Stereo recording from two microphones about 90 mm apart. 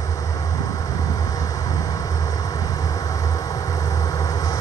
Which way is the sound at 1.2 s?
40° left (ahead or behind).